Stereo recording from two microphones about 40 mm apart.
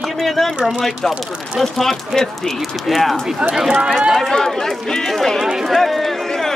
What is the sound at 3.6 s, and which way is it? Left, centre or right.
Speech, centre.